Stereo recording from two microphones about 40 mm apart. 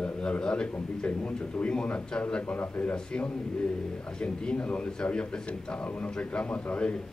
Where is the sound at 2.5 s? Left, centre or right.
Left.